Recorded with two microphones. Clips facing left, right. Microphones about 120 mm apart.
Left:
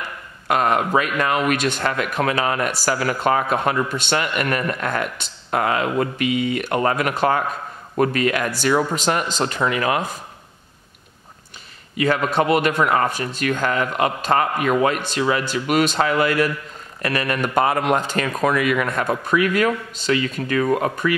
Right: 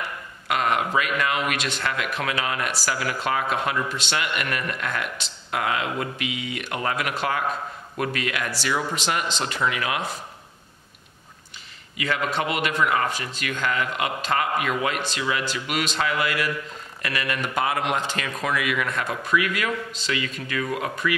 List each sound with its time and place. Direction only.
0.5 s speech: 40° left (ahead or behind)
12.0 s speech: 45° left (ahead or behind)